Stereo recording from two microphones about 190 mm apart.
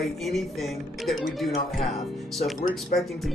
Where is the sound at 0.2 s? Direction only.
Centre (ahead or behind).